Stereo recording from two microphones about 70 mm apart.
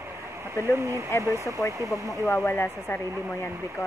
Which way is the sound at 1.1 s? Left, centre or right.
Left.